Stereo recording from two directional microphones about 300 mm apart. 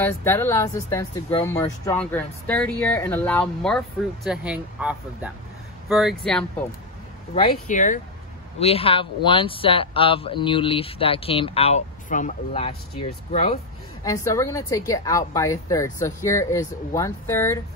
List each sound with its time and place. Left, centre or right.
0.0 s speech: centre
7.6 s speech: left
14.0 s speech: centre